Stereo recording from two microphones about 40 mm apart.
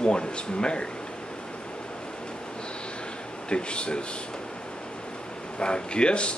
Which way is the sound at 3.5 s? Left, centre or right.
Left.